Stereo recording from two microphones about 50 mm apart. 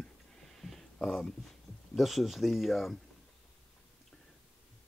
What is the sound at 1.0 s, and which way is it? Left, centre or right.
Speech, centre.